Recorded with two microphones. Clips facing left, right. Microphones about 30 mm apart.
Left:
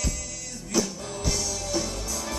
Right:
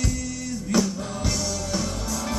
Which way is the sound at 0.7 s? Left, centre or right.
Right.